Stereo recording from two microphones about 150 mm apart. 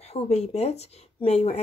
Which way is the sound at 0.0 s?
45° left (ahead or behind).